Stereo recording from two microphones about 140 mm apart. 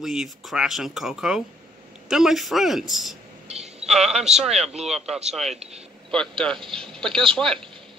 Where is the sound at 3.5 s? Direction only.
50° right (ahead or behind).